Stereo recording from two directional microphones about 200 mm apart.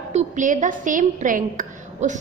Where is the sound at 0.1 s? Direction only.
40° right (ahead or behind).